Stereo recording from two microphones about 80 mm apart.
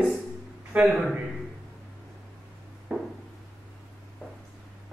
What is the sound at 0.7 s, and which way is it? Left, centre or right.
Speech, centre.